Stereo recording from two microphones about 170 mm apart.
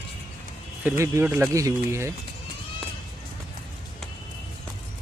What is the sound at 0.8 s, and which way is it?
Speech, 15° right (ahead or behind).